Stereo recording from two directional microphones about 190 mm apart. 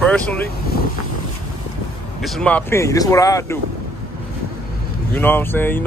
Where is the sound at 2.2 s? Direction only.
5° left (ahead or behind).